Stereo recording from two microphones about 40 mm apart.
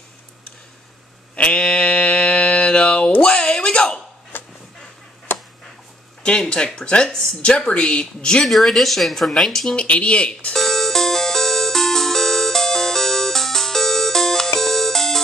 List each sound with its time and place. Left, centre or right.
1.3 s a sound: left
4.3 s vehicle: left
6.2 s speech: left
8.5 s speech: centre
9.8 s speech: left
10.5 s music: centre